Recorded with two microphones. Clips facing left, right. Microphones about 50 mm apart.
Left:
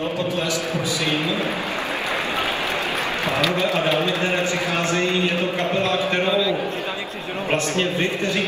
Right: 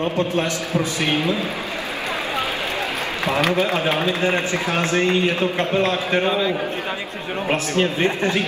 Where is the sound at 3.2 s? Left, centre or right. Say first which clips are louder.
Right 3 dB; right.